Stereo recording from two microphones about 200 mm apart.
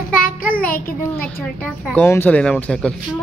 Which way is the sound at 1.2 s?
10° left (ahead or behind).